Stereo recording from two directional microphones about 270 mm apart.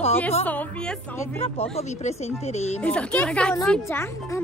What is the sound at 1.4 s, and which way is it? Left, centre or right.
A woman's voice, left.